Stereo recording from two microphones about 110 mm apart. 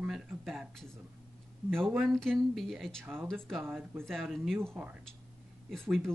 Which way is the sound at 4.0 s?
Centre (ahead or behind).